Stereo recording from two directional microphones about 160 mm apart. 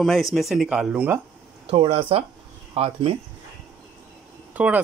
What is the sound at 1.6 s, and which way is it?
Speech, 35° right (ahead or behind).